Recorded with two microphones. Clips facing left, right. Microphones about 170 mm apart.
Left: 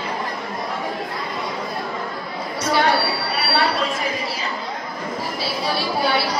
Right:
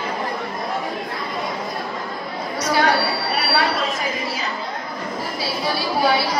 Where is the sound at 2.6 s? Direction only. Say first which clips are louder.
Even; 30° left (ahead or behind).